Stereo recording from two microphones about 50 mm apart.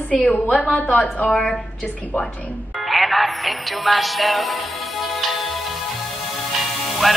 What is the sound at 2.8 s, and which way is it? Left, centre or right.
Music, centre.